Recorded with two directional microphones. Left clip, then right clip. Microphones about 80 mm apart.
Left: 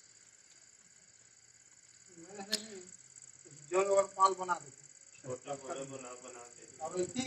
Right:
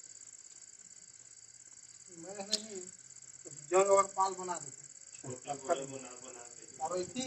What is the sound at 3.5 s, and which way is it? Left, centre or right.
A man's voice, right.